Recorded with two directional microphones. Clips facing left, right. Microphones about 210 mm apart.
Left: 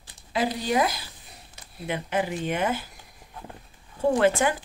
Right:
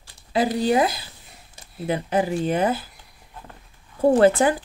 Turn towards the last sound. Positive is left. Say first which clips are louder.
# right 5 dB
turn(degrees=-35)  # may be behind; listen again after turning